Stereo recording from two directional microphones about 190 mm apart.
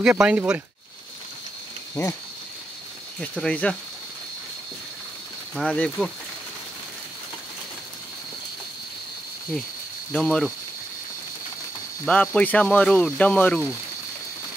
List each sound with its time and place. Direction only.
0.0 s speech: 5° right (ahead or behind)
2.0 s speech: 15° left (ahead or behind)
3.2 s speech: 5° left (ahead or behind)
5.6 s speech: 5° left (ahead or behind)
10.1 s speech: 5° left (ahead or behind)
12.1 s speech: 5° left (ahead or behind)